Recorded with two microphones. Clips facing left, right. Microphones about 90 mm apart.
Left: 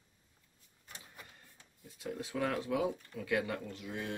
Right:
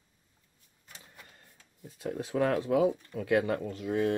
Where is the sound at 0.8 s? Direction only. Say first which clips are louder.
Even; 15° left (ahead or behind).